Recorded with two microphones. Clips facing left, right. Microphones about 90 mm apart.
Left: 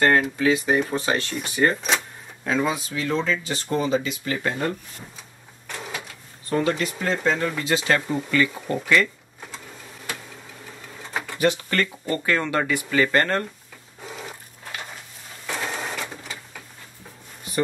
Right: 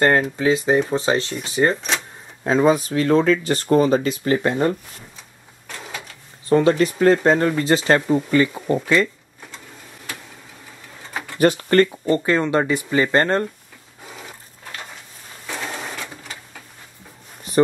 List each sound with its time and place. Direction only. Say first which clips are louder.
0.4 s speech: right 3 dB; 25° right (ahead or behind)
1.8 s speech: left 1 dB; centre (ahead or behind)
2.4 s speech: right 7 dB; 30° right (ahead or behind)
2.7 s speech: right 9 dB; 45° right (ahead or behind)
4.4 s speech: right 6 dB; 30° right (ahead or behind)
6.5 s speech: right 7 dB; 35° right (ahead or behind)
7.0 s speech: right 8 dB; 45° right (ahead or behind); by 9.1 s 20° right (ahead or behind)
11.3 s speech: right 7 dB; 45° right (ahead or behind)
12.1 s speech: right 5 dB; 20° right (ahead or behind)